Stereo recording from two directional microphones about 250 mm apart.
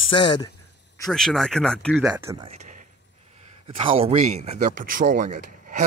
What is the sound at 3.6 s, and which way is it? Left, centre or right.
Speech, right.